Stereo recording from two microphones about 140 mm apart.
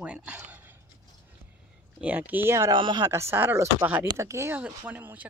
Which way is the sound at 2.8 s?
35° right (ahead or behind).